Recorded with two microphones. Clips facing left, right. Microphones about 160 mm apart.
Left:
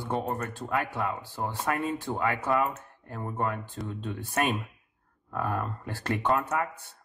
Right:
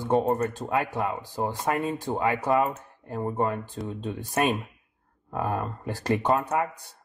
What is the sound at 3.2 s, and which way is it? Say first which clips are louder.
Speech: right 6 dB; 35° right (ahead or behind).